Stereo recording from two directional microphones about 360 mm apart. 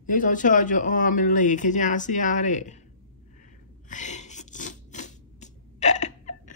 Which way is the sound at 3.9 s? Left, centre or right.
Centre.